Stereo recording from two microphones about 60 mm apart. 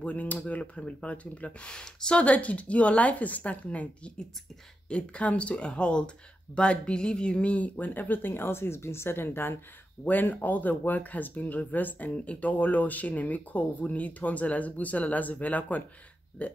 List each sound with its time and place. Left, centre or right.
0.0 s speech: left